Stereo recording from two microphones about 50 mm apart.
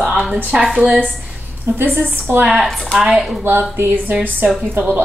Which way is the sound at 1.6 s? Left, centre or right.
Right.